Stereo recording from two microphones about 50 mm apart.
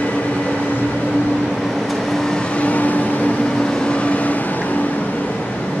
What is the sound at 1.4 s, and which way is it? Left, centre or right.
Vehicle, centre.